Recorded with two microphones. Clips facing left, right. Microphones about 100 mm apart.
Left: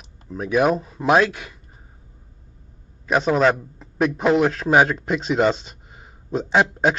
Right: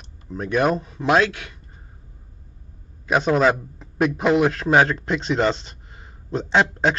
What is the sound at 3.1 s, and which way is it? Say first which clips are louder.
A man's voice: even; centre (ahead or behind).